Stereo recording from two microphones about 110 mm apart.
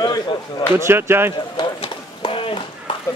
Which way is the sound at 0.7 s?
20° right (ahead or behind).